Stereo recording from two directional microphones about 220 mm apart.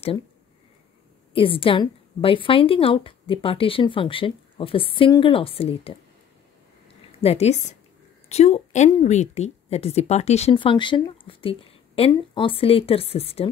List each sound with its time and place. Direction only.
1.3 s a woman's voice: 25° left (ahead or behind)
7.2 s a woman's voice: 30° left (ahead or behind)